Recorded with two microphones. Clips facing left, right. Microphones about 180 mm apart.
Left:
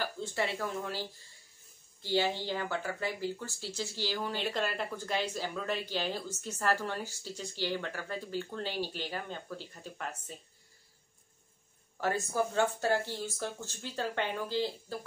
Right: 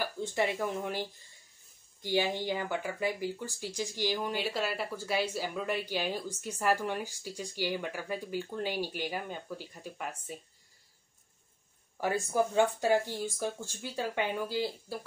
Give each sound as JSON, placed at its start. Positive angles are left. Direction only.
{"t": 0.0, "sound": "speech", "side_deg": -15}
{"t": 12.0, "sound": "speech", "side_deg": -15}